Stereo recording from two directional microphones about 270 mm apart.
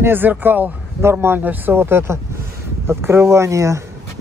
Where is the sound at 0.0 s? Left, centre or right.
Centre.